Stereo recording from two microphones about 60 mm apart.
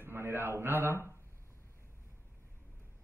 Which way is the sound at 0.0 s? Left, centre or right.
Right.